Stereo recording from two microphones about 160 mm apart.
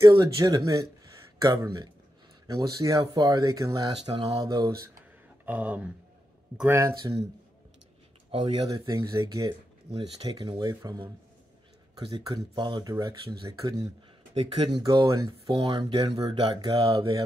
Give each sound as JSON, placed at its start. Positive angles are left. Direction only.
{"t": 0.2, "sound": "speech", "side_deg": -20}
{"t": 5.4, "sound": "speech", "side_deg": -10}
{"t": 8.3, "sound": "speech", "side_deg": -30}
{"t": 12.3, "sound": "speech", "side_deg": -25}
{"t": 14.3, "sound": "speech", "side_deg": -40}
{"t": 15.7, "sound": "speech", "side_deg": -25}